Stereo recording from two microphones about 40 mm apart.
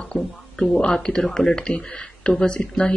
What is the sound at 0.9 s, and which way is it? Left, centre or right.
Speech, centre.